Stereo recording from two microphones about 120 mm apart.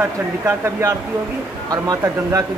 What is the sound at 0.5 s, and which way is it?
A man's voice, 25° right (ahead or behind).